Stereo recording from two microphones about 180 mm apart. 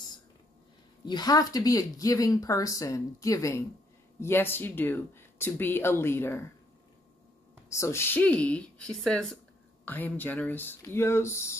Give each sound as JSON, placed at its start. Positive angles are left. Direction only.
{"t": 1.0, "sound": "speech", "side_deg": 20}
{"t": 7.7, "sound": "a woman's voice", "side_deg": 15}